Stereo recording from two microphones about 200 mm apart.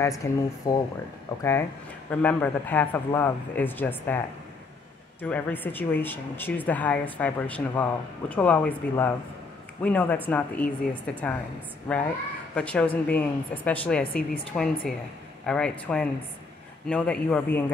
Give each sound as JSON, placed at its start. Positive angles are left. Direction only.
{"t": 0.0, "sound": "speech", "side_deg": 15}
{"t": 5.2, "sound": "speech", "side_deg": 10}
{"t": 16.8, "sound": "speech", "side_deg": 5}